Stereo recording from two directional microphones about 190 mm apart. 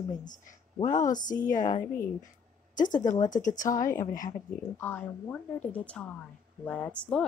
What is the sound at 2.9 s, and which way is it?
Speech, 20° left (ahead or behind).